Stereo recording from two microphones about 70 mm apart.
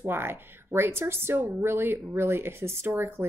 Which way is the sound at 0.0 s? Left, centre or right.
Right.